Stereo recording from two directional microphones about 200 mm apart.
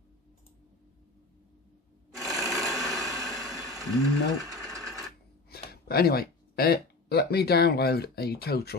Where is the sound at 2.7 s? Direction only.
Centre (ahead or behind).